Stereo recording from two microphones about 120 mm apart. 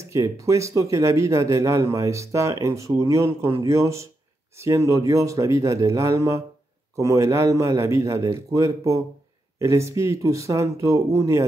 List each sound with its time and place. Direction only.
0.1 s speech: 25° right (ahead or behind)